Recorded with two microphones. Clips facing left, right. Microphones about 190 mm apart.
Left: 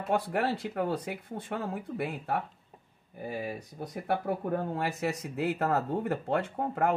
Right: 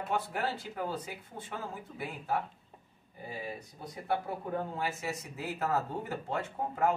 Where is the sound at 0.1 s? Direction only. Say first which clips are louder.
Left 6 dB; 65° left (ahead or behind).